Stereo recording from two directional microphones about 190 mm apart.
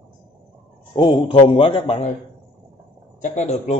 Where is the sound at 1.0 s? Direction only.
25° left (ahead or behind).